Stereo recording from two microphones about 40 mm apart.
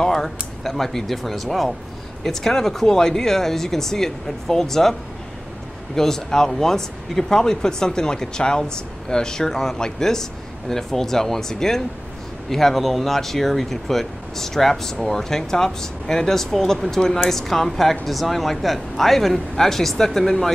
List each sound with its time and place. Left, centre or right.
0.0 s speech: centre
5.9 s speech: centre